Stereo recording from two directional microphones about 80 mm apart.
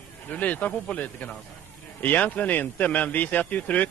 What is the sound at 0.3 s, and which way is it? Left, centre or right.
A man's voice, centre.